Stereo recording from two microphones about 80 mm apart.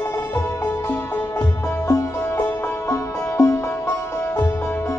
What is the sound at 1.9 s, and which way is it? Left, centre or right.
Music, left.